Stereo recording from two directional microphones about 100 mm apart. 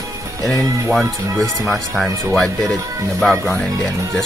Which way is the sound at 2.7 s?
35° right (ahead or behind).